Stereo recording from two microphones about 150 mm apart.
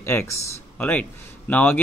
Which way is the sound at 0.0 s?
15° left (ahead or behind).